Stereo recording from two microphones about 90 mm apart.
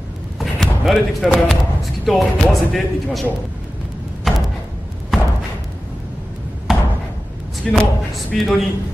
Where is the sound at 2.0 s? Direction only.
Centre (ahead or behind).